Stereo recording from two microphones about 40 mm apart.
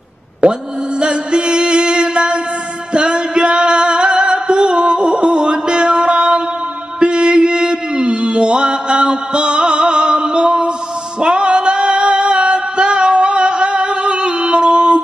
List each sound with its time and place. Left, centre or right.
0.4 s mantra: right
2.9 s music: right
7.0 s mantra: right
11.1 s music: right